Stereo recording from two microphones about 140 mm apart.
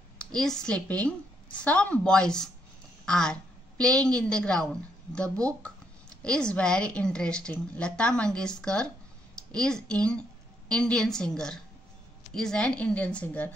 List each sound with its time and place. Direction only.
0.2 s a woman's voice: 5° left (ahead or behind)